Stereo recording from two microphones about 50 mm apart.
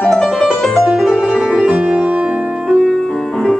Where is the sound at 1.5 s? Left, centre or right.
Centre.